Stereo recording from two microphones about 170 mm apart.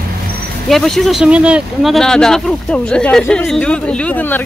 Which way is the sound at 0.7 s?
Centre (ahead or behind).